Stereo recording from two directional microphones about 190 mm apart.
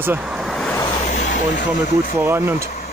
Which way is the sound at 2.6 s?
35° left (ahead or behind).